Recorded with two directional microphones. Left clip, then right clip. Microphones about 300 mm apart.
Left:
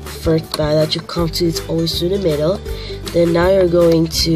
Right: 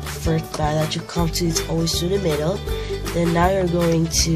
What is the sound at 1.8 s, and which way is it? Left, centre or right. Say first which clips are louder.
Speech: left 4 dB; centre.